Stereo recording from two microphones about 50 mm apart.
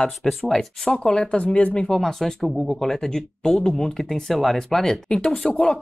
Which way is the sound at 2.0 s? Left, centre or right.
Centre.